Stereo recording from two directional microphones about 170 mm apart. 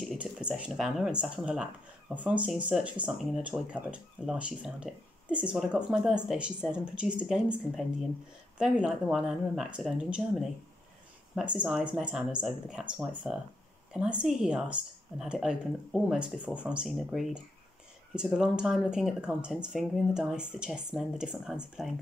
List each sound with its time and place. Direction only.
0.0 s speech: 5° right (ahead or behind)
11.5 s speech: 5° right (ahead or behind)